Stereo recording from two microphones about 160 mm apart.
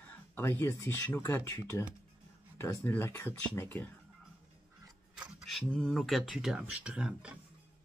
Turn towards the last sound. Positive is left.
turn(degrees=-5)  # may be behind; listen again after turning